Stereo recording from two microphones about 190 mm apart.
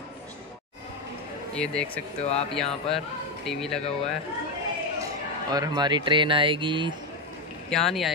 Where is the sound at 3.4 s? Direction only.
Centre (ahead or behind).